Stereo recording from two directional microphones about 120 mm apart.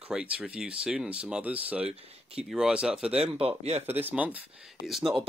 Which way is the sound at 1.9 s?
55° right (ahead or behind).